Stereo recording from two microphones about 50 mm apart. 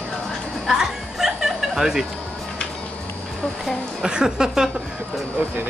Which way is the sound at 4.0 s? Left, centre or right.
Centre.